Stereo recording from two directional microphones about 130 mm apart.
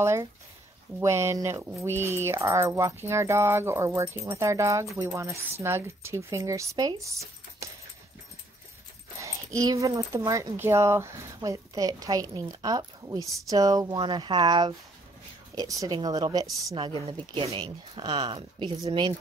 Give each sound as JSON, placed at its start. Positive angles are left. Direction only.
{"t": 0.0, "sound": "speech", "side_deg": -20}
{"t": 7.1, "sound": "a sound", "side_deg": -25}
{"t": 9.2, "sound": "speech", "side_deg": -25}